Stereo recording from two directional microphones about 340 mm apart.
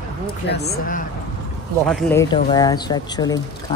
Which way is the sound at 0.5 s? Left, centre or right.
Left.